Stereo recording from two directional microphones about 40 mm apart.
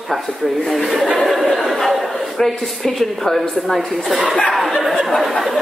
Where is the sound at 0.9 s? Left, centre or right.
Centre.